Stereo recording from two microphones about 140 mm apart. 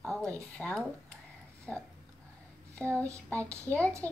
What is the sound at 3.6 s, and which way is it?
Speech, 10° left (ahead or behind).